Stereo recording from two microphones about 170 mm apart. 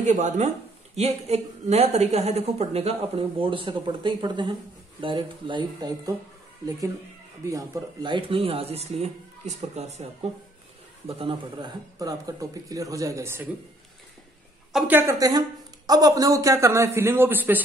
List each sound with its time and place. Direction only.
0.0 s a woman's voice: 45° right (ahead or behind); by 6.1 s 20° right (ahead or behind)
7.4 s a woman's voice: 20° right (ahead or behind)
14.7 s a man's voice: 5° right (ahead or behind)